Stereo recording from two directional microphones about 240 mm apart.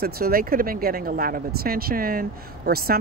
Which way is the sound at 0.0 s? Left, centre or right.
Right.